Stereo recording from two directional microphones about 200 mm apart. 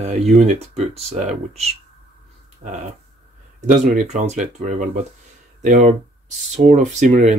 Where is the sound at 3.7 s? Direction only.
35° right (ahead or behind).